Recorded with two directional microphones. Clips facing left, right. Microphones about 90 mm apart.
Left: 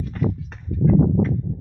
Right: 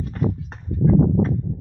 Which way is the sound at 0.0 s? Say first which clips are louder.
Even; 35° right (ahead or behind).